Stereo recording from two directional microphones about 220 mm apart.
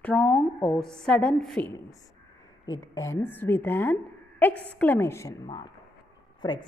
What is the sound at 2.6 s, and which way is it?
A woman's voice, 15° left (ahead or behind).